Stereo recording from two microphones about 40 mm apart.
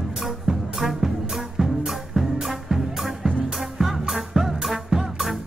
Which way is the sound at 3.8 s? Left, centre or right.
Centre.